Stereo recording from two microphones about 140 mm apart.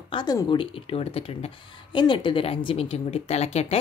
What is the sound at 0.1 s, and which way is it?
Speech, 30° left (ahead or behind).